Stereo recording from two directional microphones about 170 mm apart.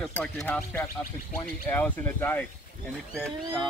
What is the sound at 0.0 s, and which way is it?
Speech, 5° left (ahead or behind).